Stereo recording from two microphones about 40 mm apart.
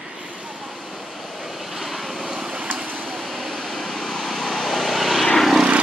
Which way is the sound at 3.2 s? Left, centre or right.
Centre.